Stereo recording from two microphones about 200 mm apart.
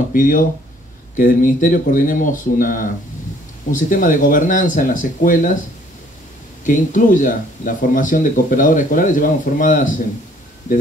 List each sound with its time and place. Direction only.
0.1 s speech: 45° left (ahead or behind)
6.6 s speech: 40° left (ahead or behind)